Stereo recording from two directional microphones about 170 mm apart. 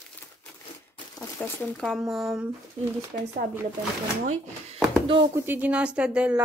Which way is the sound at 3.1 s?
50° right (ahead or behind).